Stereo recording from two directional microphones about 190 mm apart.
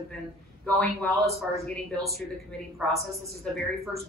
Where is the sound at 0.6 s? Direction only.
5° left (ahead or behind).